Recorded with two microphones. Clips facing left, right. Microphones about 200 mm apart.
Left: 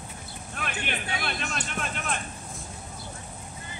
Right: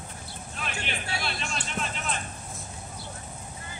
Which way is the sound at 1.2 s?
55° left (ahead or behind).